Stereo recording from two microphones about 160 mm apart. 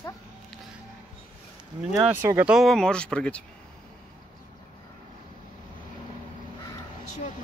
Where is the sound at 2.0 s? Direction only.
15° right (ahead or behind); by 3.4 s 5° left (ahead or behind).